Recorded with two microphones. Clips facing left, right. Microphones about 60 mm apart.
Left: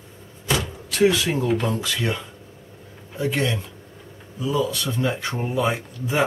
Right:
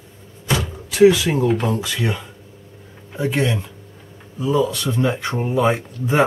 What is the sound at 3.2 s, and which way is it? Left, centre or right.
Speech, right.